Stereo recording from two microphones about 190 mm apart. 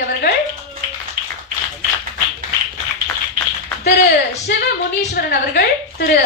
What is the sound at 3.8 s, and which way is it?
A woman's voice, 60° left (ahead or behind).